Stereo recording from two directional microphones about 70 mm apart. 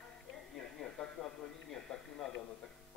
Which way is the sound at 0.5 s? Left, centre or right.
Centre.